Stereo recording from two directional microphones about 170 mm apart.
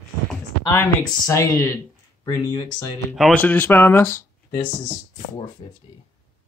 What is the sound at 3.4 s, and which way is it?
Speech, 10° left (ahead or behind).